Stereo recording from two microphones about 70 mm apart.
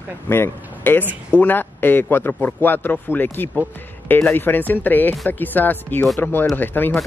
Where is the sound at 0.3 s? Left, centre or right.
Left.